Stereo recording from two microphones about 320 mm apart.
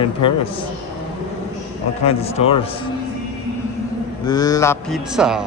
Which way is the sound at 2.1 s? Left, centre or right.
Centre.